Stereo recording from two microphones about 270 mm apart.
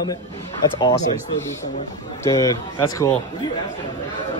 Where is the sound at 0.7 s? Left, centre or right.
Centre.